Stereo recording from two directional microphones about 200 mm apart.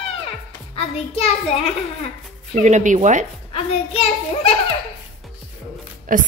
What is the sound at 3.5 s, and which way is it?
A child's voice, 30° left (ahead or behind).